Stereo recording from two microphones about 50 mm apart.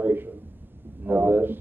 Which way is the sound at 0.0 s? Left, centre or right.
Right.